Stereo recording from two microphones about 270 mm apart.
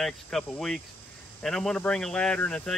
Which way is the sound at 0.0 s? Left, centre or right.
Centre.